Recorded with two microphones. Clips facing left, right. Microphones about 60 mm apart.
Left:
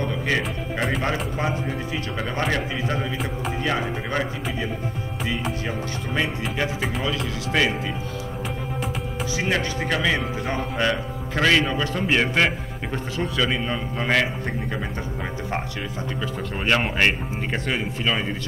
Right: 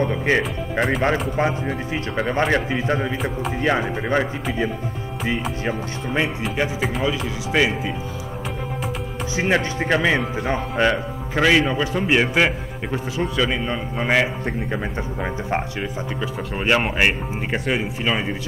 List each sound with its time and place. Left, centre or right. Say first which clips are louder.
0.0 s speech: right 5 dB; right
0.4 s speech: right 4 dB; centre
1.3 s speech: right 4 dB; right
6.8 s speech: right 3 dB; centre
9.4 s speech: right 5 dB; right